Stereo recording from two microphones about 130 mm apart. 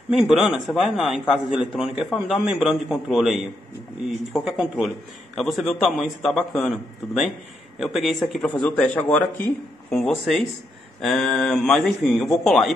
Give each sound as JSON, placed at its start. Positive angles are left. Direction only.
{"t": 0.1, "sound": "a man's voice", "side_deg": 0}
{"t": 9.9, "sound": "a man's voice", "side_deg": 0}